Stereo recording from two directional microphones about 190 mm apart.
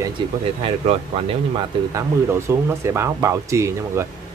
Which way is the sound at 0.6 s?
30° right (ahead or behind).